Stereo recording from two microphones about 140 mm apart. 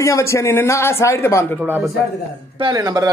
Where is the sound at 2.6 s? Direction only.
30° right (ahead or behind).